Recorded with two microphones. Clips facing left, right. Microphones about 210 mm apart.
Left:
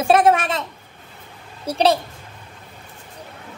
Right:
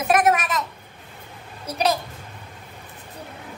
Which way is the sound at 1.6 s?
30° left (ahead or behind).